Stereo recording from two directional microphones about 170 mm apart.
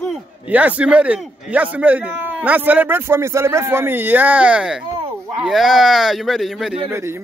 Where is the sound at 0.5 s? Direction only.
10° right (ahead or behind).